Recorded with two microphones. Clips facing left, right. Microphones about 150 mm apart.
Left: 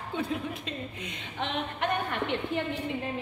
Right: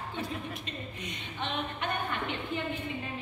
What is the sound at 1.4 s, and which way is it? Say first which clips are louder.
Speech: left 3 dB; 75° left (ahead or behind).